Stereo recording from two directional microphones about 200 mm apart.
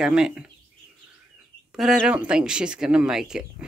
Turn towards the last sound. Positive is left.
turn(degrees=-5)  # may be behind; listen again after turning